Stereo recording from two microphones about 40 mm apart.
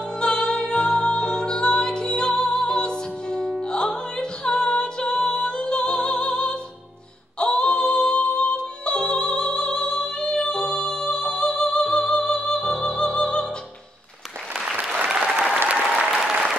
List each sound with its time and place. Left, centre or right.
0.2 s music: centre
15.1 s applause: right